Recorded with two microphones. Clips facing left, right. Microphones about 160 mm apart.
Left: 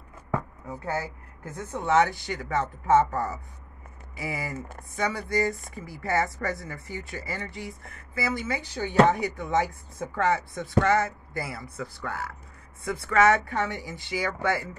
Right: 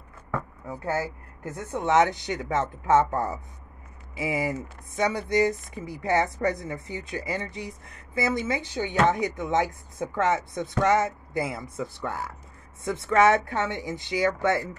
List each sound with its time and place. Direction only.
0.7 s speech: 20° right (ahead or behind)
4.2 s speech: 20° right (ahead or behind)